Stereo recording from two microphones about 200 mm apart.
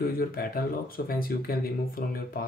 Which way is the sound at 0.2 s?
45° left (ahead or behind).